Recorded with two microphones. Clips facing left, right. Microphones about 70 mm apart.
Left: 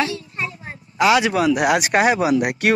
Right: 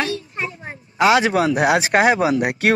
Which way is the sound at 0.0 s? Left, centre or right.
Right.